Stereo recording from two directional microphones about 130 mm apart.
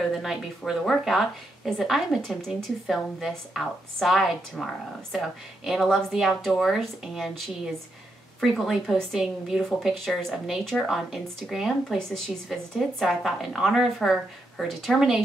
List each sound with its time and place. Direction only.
0.1 s a woman's voice: centre (ahead or behind)